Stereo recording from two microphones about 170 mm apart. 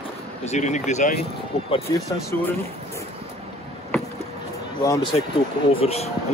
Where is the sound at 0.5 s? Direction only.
45° left (ahead or behind).